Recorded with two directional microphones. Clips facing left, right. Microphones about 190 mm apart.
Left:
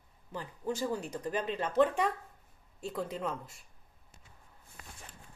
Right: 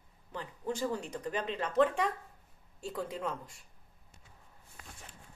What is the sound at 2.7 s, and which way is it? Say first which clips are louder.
Speech: left 1 dB; 5° left (ahead or behind).